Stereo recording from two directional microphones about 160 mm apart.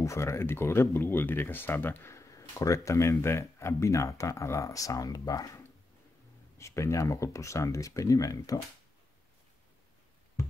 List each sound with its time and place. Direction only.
0.0 s speech: 20° left (ahead or behind)